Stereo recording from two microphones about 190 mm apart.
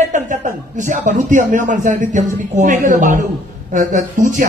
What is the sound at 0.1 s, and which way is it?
Speech, 40° right (ahead or behind).